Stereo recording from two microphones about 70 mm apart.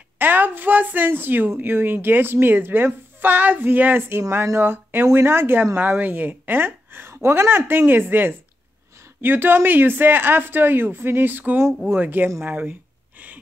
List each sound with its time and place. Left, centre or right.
0.2 s a woman's voice: right
4.2 s a woman's voice: right